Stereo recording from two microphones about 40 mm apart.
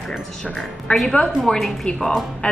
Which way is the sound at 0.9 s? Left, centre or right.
Left.